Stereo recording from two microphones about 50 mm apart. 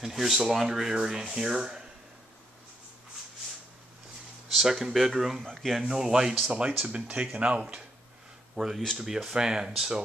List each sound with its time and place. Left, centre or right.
0.0 s speech: centre
4.5 s a sound: centre
4.9 s speech: centre
5.4 s speech: centre
5.8 s speech: centre
8.5 s speech: centre